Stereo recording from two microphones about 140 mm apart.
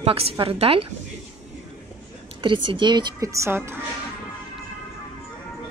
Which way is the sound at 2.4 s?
35° right (ahead or behind).